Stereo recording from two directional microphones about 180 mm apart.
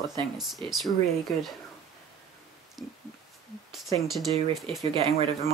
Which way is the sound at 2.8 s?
Centre (ahead or behind).